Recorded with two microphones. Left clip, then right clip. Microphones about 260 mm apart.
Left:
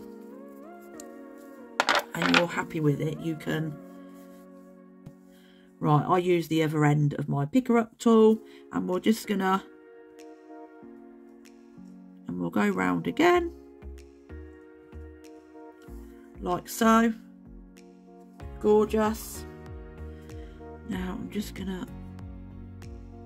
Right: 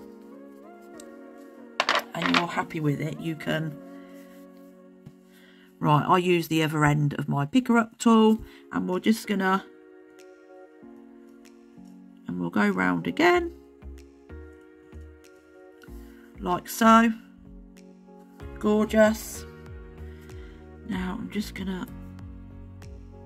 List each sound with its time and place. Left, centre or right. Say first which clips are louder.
2.4 s speech: right 1 dB; centre
2.8 s speech: left 2 dB; centre
5.8 s speech: right 3 dB; centre
12.3 s speech: right 2 dB; centre
16.3 s speech: right 2 dB; centre
18.6 s speech: right 2 dB; right
20.8 s speech: right 3 dB; centre